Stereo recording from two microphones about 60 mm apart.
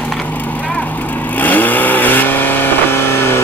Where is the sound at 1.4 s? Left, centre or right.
Left.